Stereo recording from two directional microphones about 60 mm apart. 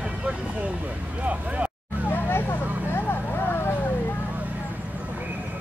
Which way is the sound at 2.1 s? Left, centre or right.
Left.